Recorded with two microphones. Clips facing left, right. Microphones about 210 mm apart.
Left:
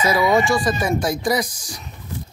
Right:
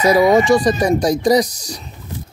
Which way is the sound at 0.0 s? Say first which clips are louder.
Right 6 dB; 40° right (ahead or behind).